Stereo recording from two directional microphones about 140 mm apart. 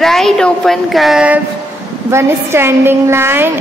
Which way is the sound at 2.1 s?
20° right (ahead or behind).